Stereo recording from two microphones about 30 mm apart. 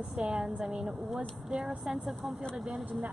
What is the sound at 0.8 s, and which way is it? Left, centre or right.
Speech, centre.